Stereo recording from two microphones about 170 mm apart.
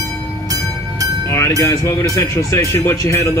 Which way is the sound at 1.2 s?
15° left (ahead or behind).